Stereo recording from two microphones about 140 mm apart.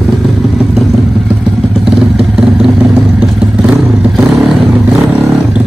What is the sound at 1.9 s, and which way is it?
Vehicle, 5° right (ahead or behind).